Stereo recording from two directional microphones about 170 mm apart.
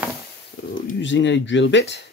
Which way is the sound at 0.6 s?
80° left.